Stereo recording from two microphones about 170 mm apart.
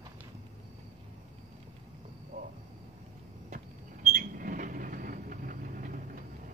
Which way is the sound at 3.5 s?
45° right (ahead or behind).